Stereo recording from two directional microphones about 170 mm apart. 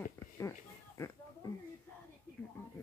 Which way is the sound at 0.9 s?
15° left (ahead or behind).